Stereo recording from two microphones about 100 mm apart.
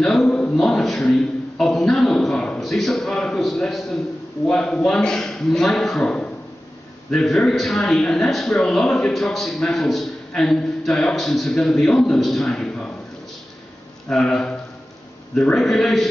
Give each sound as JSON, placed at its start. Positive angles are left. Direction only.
{"t": 0.0, "sound": "a sound", "side_deg": 5}
{"t": 4.5, "sound": "a man's voice", "side_deg": 10}
{"t": 14.0, "sound": "a man's voice", "side_deg": 5}